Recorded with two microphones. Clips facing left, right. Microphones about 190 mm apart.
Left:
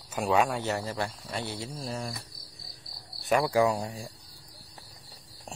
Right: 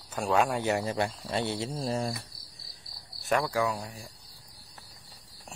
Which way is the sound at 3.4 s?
30° left (ahead or behind).